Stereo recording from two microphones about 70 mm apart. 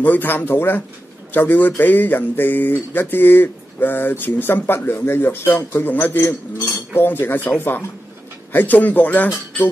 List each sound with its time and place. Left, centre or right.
0.0 s speech: left